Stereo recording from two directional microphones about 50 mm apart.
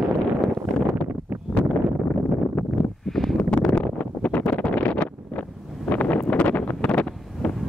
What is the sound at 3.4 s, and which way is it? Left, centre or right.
Wind noise, left.